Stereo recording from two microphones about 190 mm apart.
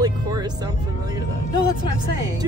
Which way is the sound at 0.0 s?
20° right (ahead or behind).